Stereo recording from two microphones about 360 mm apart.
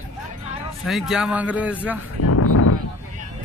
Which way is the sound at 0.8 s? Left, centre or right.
Centre.